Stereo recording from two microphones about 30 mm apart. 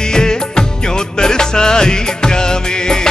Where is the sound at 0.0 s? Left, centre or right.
Left.